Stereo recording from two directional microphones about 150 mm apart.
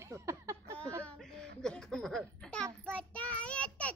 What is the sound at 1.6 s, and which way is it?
Child singing, 5° left (ahead or behind).